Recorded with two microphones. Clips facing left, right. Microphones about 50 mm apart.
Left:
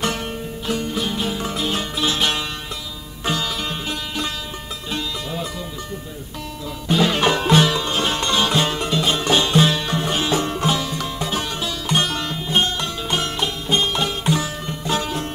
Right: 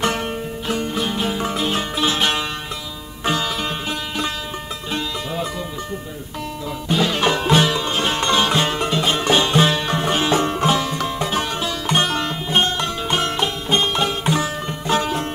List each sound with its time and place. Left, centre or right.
0.7 s music: right
3.3 s sitar: right
4.9 s music: right
7.2 s music: centre; by 15.2 s right